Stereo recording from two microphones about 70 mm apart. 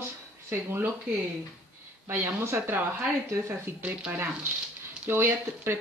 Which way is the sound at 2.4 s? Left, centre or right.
Right.